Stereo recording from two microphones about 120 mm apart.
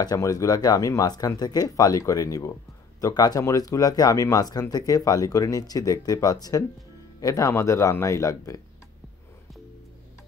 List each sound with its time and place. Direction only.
0.0 s speech: 30° left (ahead or behind)